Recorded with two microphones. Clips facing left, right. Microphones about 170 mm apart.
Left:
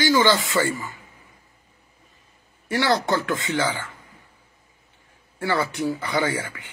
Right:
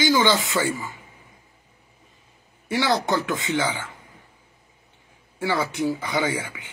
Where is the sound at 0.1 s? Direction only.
Centre (ahead or behind).